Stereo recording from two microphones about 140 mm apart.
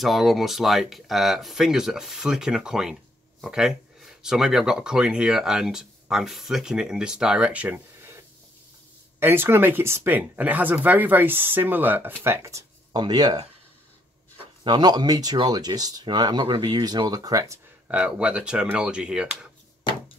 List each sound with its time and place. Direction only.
0.0 s speech: centre (ahead or behind)
9.2 s speech: 15° right (ahead or behind)
14.6 s speech: 30° right (ahead or behind)
17.8 s speech: 10° right (ahead or behind)